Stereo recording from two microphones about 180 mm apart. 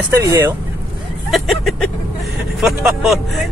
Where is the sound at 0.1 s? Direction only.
15° right (ahead or behind).